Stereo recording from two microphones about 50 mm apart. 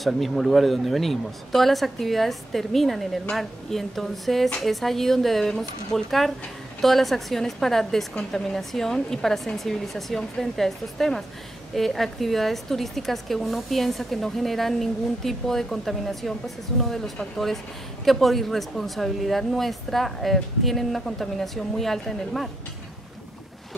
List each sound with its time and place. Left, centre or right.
0.0 s a woman's voice: centre